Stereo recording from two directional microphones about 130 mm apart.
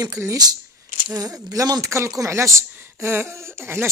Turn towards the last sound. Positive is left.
turn(degrees=-20)  # may be behind; listen again after turning